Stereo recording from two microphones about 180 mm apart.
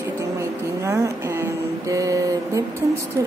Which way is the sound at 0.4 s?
15° right (ahead or behind).